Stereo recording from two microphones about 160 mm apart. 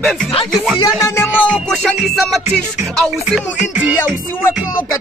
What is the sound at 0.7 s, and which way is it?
Music, 20° left (ahead or behind).